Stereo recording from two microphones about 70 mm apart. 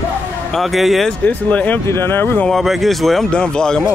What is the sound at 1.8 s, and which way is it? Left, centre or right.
Speech, left.